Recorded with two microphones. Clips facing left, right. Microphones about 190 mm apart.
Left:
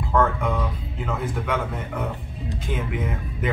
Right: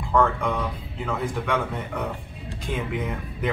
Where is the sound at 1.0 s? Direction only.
5° left (ahead or behind).